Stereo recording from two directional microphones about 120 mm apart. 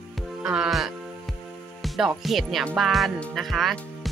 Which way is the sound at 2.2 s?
Centre (ahead or behind).